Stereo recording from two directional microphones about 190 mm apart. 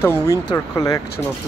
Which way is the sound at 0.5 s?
20° left (ahead or behind).